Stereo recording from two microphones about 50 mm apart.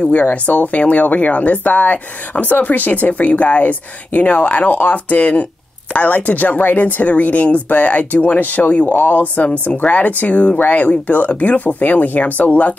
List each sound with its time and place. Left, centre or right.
0.1 s speech: left